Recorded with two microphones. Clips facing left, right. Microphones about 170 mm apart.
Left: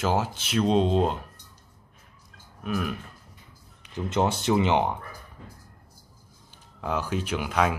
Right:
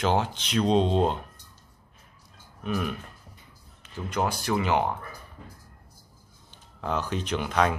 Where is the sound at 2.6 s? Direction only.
Centre (ahead or behind).